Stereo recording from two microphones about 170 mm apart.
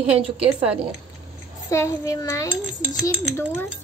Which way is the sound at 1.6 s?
15° left (ahead or behind).